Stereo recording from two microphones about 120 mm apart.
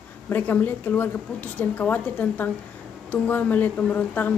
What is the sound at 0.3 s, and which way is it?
A woman's voice, 15° left (ahead or behind).